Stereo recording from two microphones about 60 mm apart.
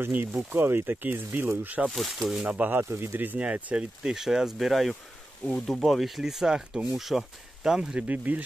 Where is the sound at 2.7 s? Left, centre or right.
Right.